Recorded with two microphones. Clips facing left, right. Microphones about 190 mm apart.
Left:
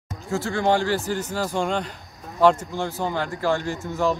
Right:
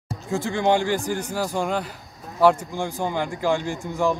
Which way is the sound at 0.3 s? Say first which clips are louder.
Right 1 dB; 15° right (ahead or behind).